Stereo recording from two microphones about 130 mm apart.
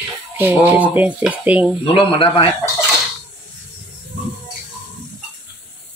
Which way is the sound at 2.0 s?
35° left (ahead or behind).